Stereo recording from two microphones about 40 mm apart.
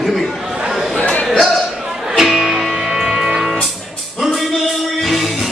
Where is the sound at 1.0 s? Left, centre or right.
Left.